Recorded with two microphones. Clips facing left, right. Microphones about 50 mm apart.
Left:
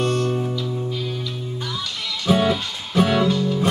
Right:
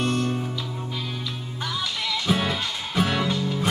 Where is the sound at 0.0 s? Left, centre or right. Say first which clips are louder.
Left 3 dB; centre.